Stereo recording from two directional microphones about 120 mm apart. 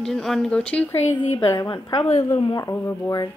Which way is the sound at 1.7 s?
40° left (ahead or behind).